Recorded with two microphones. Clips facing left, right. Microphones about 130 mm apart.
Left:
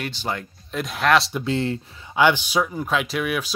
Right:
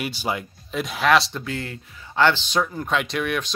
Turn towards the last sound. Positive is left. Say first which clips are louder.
# even
turn(degrees=5)  # may be behind; listen again after turning